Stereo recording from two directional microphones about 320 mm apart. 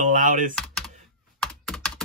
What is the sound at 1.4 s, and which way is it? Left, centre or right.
Computer keyboard, centre.